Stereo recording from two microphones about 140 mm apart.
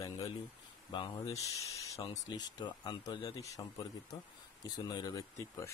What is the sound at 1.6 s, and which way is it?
Speech, 20° left (ahead or behind).